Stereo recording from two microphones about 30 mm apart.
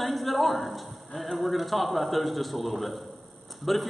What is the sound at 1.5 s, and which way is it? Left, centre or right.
A man's voice, centre.